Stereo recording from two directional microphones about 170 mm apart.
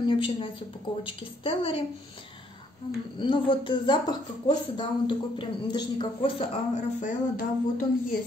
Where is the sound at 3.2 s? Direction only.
30° left (ahead or behind).